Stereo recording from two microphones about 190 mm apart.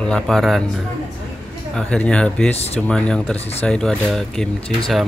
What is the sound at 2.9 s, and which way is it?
Speech, 5° left (ahead or behind).